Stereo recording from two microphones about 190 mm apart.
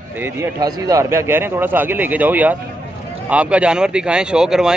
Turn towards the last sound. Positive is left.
turn(degrees=-5)  # may be behind; listen again after turning